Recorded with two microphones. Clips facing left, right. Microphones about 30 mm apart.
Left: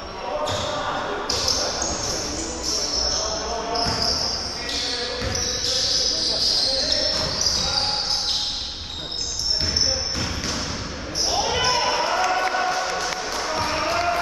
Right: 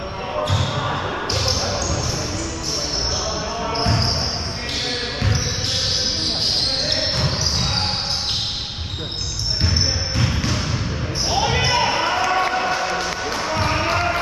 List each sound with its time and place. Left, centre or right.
0.4 s basketball bounce: centre
3.7 s basketball bounce: right
6.9 s basketball bounce: centre
10.1 s basketball bounce: centre